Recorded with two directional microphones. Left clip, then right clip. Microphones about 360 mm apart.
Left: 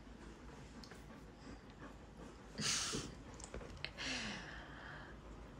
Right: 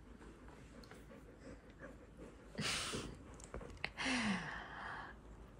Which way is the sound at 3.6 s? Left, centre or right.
Centre.